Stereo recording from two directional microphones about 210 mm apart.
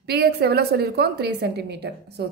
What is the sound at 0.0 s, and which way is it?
A woman's voice, 50° right (ahead or behind).